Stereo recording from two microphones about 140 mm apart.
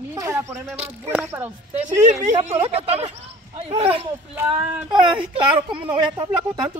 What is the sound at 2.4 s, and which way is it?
Speech, 50° right (ahead or behind).